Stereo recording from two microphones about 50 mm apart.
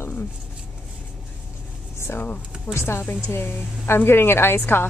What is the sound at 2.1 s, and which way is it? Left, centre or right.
Speech, left.